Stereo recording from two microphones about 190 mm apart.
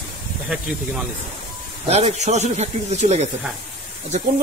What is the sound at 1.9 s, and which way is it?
Speech, 35° right (ahead or behind).